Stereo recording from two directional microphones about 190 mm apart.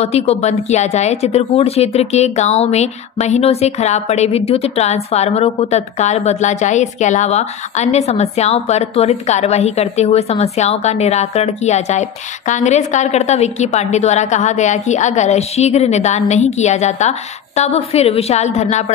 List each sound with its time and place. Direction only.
0.0 s a woman's voice: 30° left (ahead or behind)